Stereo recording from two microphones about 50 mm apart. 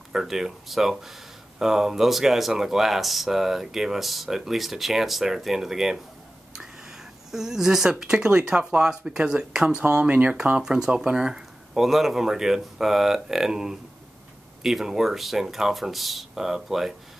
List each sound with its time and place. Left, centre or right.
0.1 s speech: centre